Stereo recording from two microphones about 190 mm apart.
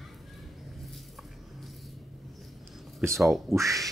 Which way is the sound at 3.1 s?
Centre (ahead or behind).